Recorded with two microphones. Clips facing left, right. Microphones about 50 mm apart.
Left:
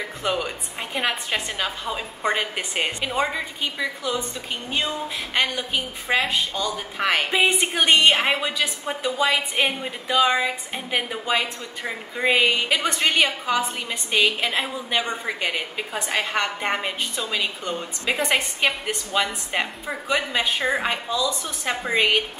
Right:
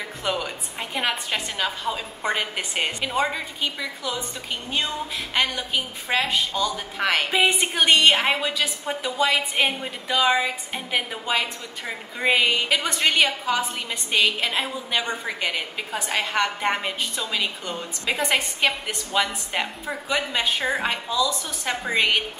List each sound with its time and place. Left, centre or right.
0.2 s a woman's voice: centre
7.7 s a woman's voice: left
8.3 s a woman's voice: centre
9.7 s a woman's voice: centre
12.7 s a woman's voice: left
13.8 s a woman's voice: centre